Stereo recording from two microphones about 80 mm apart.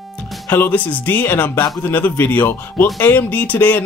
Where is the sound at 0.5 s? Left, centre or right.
Left.